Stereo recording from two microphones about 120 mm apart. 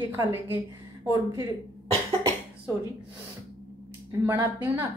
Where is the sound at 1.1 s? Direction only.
25° right (ahead or behind).